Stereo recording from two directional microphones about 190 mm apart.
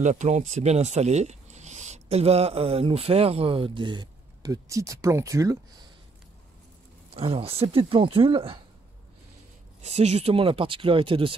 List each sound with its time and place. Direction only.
0.0 s speech: 40° right (ahead or behind); by 5.9 s 20° right (ahead or behind)
7.2 s speech: 30° right (ahead or behind)
9.8 s speech: 35° right (ahead or behind)